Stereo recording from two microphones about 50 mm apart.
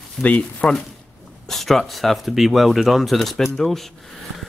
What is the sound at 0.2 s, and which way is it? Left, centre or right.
Speech, left.